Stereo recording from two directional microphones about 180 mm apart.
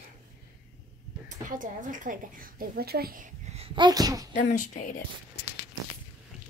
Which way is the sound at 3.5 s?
30° right (ahead or behind).